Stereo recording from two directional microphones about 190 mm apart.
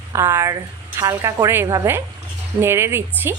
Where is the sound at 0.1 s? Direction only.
15° right (ahead or behind).